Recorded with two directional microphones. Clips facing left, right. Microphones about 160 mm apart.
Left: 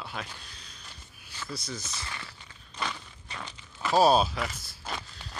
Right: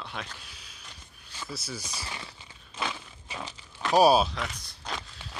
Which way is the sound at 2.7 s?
5° right (ahead or behind).